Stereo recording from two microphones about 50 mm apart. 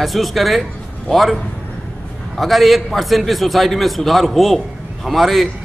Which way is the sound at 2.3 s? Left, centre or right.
Centre.